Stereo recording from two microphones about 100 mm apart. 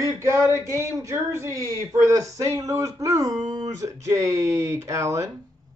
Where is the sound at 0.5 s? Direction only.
30° right (ahead or behind).